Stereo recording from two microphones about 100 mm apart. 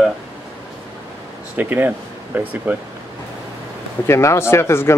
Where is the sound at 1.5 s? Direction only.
20° right (ahead or behind).